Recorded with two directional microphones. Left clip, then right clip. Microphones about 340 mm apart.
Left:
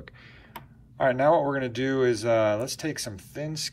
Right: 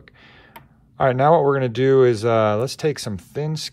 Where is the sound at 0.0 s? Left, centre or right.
Centre.